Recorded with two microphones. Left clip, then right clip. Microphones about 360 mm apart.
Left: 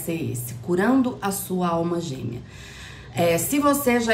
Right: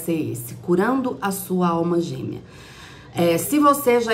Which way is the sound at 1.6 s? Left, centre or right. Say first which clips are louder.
Right 3 dB; left.